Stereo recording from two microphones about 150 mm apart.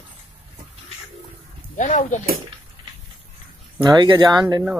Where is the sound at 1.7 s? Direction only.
55° left (ahead or behind).